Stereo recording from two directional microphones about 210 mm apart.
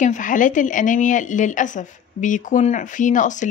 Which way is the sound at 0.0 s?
35° left (ahead or behind).